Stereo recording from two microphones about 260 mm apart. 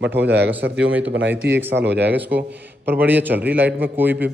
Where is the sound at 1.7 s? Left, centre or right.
Right.